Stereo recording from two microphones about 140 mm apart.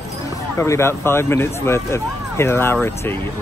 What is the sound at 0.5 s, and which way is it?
Speech, 20° left (ahead or behind).